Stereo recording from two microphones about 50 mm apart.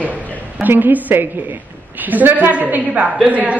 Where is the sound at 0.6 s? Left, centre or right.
Right.